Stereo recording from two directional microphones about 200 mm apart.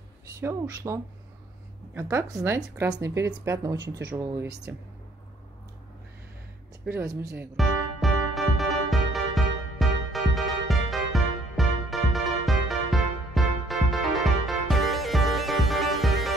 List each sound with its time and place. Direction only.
0.4 s a woman's voice: 15° right (ahead or behind)
7.1 s a woman's voice: 15° right (ahead or behind)
7.5 s music: centre (ahead or behind)